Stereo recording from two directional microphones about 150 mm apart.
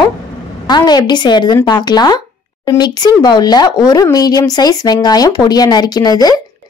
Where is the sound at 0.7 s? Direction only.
30° left (ahead or behind).